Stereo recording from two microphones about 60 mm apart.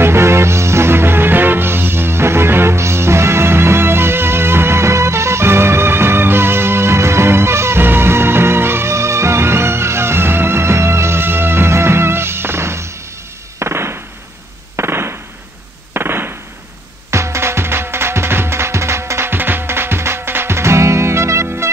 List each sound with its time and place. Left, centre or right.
0.0 s music: right
13.6 s fireworks: right
14.8 s gunshot: right
17.1 s music: right